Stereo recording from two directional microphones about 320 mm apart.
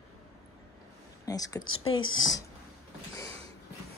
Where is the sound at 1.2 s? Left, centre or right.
Centre.